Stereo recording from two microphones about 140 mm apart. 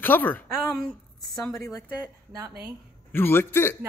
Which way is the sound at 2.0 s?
20° right (ahead or behind).